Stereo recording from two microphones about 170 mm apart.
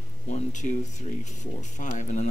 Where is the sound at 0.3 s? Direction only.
45° left (ahead or behind).